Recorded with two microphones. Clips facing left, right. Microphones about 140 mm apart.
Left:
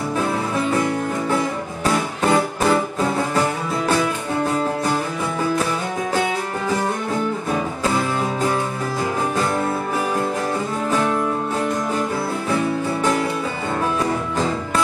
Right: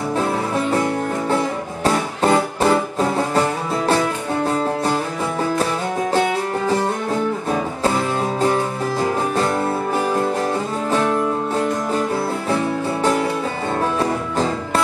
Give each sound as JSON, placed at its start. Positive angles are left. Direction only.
{"t": 1.9, "sound": "music", "side_deg": -35}